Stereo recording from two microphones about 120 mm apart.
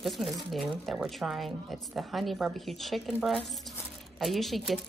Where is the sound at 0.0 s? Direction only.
Centre (ahead or behind).